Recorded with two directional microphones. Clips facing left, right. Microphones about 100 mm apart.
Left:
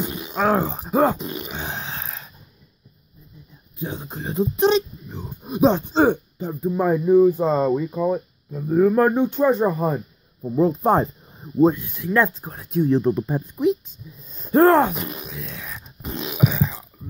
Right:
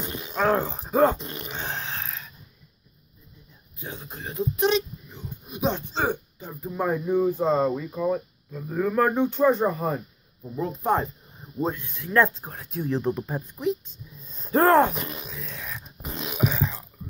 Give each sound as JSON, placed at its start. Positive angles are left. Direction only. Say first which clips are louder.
{"t": 0.0, "sound": "a sound", "louder": "left 3 dB", "side_deg": 10}
{"t": 3.8, "sound": "speech", "louder": "left 7 dB", "side_deg": 20}
{"t": 6.7, "sound": "speech", "louder": "left 7 dB", "side_deg": 10}
{"t": 10.5, "sound": "speech", "louder": "left 7 dB", "side_deg": 30}
{"t": 11.5, "sound": "speech", "louder": "left 11 dB", "side_deg": 15}